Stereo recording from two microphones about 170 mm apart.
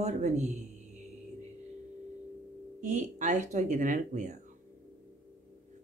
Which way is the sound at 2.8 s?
45° right (ahead or behind).